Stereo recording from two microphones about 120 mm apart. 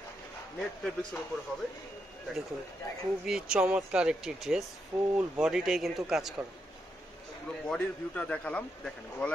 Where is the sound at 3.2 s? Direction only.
5° right (ahead or behind).